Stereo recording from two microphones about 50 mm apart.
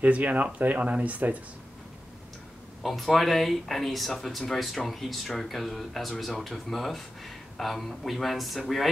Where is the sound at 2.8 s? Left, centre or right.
Centre.